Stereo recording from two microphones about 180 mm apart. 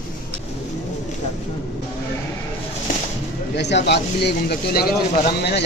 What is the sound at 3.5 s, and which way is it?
Speech, 70° left (ahead or behind).